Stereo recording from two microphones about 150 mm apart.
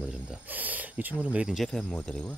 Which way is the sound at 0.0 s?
5° right (ahead or behind).